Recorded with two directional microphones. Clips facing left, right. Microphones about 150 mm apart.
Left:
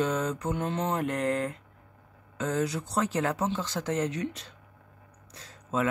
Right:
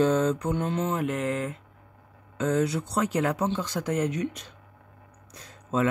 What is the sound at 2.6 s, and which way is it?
Speech, 15° right (ahead or behind).